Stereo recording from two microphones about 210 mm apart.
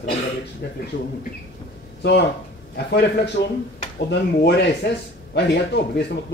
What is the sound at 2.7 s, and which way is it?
Speech, 55° left (ahead or behind).